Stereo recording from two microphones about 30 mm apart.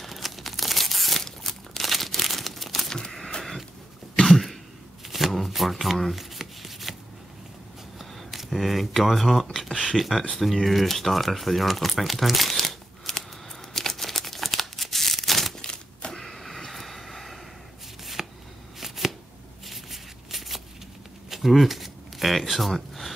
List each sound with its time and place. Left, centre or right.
0.0 s tearing: centre
1.2 s crumpling: centre
4.2 s cough: centre
5.0 s shuffling cards: centre
5.5 s speech: centre
6.1 s shuffling cards: centre
8.0 s speech: centre
13.7 s crumpling: centre
15.6 s a sound: left
16.1 s vehicle: centre
18.2 s shuffling cards: centre
19.6 s a sound: centre